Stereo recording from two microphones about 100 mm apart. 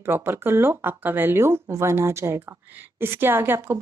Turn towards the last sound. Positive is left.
turn(degrees=-20)  # may be behind; listen again after turning